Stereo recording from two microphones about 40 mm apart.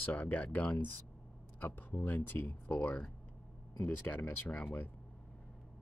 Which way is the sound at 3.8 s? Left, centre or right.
Left.